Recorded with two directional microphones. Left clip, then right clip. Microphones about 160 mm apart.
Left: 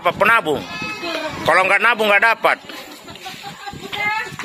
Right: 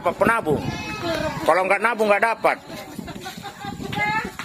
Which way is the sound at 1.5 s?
Centre (ahead or behind).